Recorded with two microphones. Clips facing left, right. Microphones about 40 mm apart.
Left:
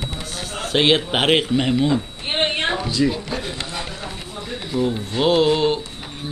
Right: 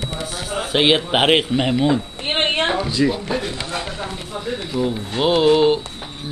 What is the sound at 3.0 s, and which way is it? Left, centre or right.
Speech, centre.